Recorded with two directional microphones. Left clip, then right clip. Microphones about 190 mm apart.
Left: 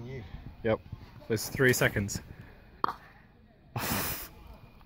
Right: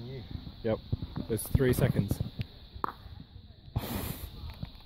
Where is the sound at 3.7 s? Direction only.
10° right (ahead or behind).